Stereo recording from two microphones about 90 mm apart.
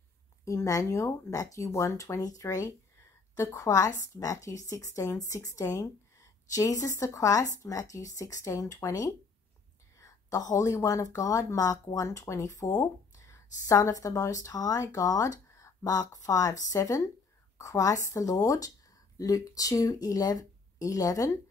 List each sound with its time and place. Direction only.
0.5 s a woman's voice: 35° left (ahead or behind)